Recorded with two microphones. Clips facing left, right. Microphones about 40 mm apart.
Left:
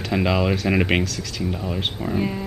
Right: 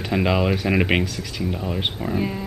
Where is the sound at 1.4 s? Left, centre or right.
Centre.